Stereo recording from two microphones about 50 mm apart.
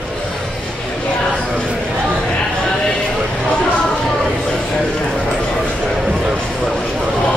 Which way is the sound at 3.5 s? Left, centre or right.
Centre.